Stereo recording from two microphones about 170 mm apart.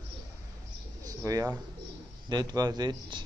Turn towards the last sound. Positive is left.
turn(degrees=-25)  # may be behind; listen again after turning